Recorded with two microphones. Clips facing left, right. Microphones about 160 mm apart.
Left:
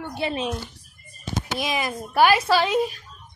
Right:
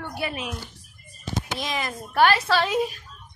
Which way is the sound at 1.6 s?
10° left (ahead or behind).